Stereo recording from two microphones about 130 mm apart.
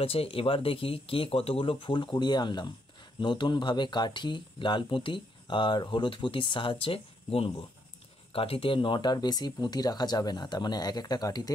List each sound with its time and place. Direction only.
0.0 s speech: 45° left (ahead or behind); by 11.5 s 30° left (ahead or behind)